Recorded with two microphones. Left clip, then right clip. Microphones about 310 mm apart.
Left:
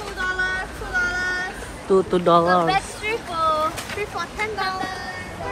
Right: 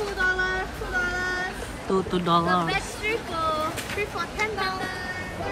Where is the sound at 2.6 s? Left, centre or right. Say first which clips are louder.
Left 5 dB; centre.